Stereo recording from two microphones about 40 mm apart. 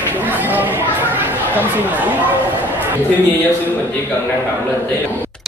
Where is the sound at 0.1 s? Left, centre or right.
Right.